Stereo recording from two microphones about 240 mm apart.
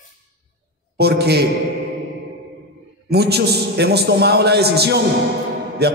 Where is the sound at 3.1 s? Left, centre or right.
Right.